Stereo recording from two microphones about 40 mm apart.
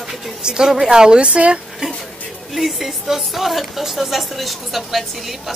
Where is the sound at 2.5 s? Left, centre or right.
Centre.